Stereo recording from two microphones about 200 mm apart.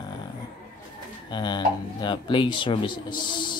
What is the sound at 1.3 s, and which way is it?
Speech, 20° left (ahead or behind).